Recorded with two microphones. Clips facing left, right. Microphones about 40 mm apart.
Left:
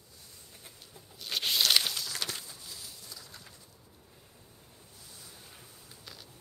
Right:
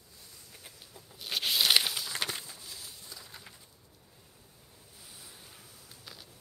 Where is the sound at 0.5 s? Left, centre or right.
Centre.